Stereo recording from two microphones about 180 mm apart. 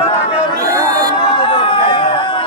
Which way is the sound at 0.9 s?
20° right (ahead or behind).